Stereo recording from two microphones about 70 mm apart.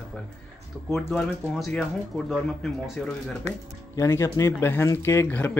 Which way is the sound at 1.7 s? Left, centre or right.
Centre.